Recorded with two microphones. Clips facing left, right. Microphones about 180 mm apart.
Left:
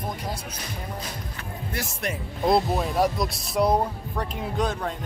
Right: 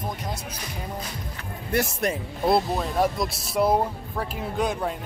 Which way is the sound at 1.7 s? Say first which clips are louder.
Right 10 dB; 60° right (ahead or behind).